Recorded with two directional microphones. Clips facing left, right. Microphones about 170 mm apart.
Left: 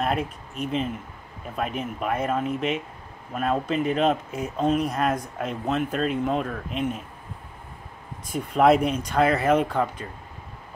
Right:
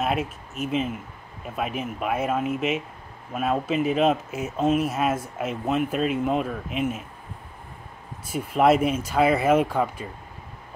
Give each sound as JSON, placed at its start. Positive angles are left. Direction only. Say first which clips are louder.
{"t": 0.0, "sound": "speech", "louder": "even", "side_deg": -5}
{"t": 8.3, "sound": "speech", "louder": "left 1 dB", "side_deg": -5}